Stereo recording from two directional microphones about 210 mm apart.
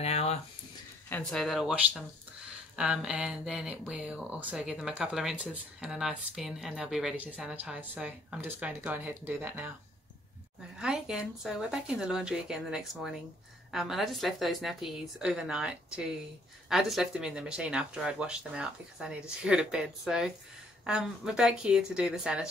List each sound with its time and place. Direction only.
0.0 s a sound: 30° left (ahead or behind)
1.0 s speech: 5° left (ahead or behind)
10.8 s speech: 5° right (ahead or behind)